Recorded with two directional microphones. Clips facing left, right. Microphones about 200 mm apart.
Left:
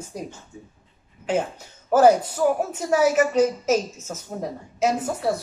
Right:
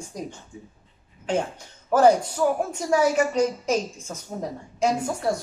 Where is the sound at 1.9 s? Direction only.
5° left (ahead or behind).